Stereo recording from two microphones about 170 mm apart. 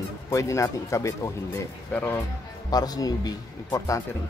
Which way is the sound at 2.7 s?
20° left (ahead or behind).